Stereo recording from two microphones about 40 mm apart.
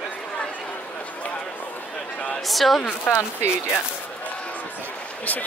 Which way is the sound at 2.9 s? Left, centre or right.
Left.